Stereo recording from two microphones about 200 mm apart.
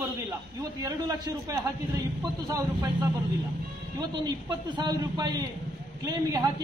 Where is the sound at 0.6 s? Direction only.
20° right (ahead or behind).